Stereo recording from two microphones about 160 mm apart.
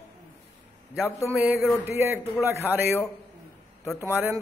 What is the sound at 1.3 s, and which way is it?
Speech, 10° right (ahead or behind).